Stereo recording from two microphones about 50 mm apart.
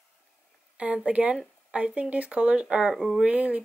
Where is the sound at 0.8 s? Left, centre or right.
Right.